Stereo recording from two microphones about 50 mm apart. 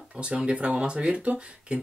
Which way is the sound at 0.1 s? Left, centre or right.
Right.